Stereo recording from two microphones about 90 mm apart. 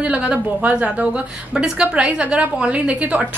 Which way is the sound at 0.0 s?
15° right (ahead or behind).